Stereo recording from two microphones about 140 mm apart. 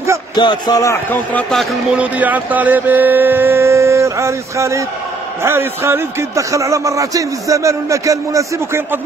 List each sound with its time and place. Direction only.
0.4 s speech: 30° left (ahead or behind)
1.1 s speech: 5° left (ahead or behind)
2.0 s music: 10° right (ahead or behind)
5.4 s a man's voice: 20° right (ahead or behind)